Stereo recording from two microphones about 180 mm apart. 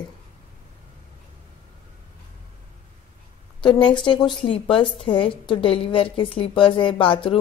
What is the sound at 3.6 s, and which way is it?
A woman's voice, 25° left (ahead or behind).